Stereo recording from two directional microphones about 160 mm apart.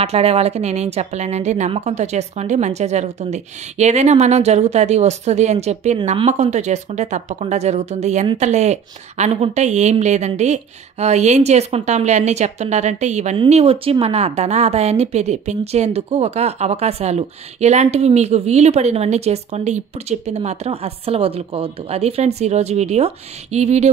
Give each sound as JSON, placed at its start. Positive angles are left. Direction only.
{"t": 0.0, "sound": "a woman's voice", "side_deg": -40}